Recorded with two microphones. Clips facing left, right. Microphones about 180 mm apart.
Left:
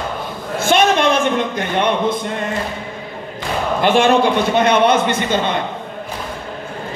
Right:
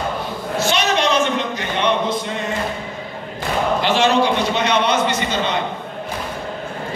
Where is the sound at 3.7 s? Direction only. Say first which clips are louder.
Left 5 dB; 50° left (ahead or behind).